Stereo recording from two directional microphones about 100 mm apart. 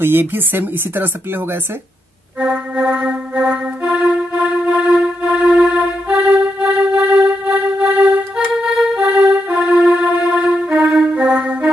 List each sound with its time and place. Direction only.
0.0 s speech: 20° right (ahead or behind)
2.4 s music: 15° right (ahead or behind)